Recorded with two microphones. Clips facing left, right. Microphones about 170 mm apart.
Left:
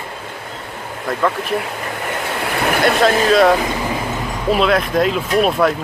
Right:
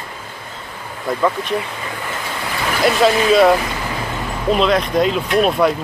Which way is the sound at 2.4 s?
60° left (ahead or behind).